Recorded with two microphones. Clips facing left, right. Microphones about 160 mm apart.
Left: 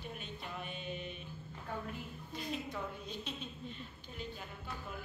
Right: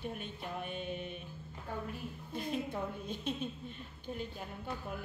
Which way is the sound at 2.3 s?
55° right (ahead or behind).